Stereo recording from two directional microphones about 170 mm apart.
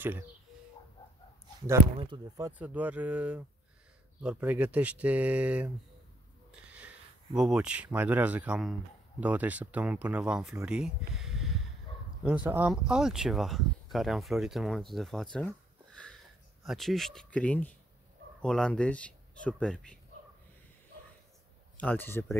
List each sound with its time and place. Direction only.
2.0 s speech: 30° right (ahead or behind)
2.6 s speech: 10° right (ahead or behind)
7.3 s speech: 5° right (ahead or behind)
15.3 s a sound: 5° left (ahead or behind)
16.6 s speech: centre (ahead or behind)
21.7 s speech: 10° left (ahead or behind)